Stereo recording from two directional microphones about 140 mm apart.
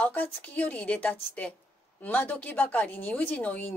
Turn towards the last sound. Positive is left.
turn(degrees=10)  # may be behind; listen again after turning